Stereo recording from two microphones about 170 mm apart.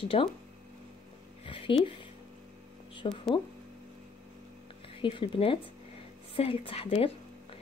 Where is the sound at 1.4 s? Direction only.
30° left (ahead or behind).